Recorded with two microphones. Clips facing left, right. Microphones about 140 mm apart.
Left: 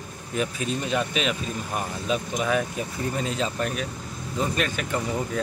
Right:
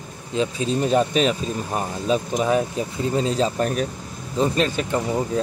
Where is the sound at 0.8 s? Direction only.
40° right (ahead or behind).